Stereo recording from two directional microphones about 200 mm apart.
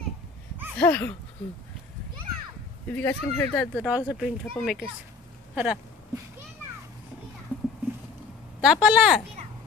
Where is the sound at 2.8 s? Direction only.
10° left (ahead or behind).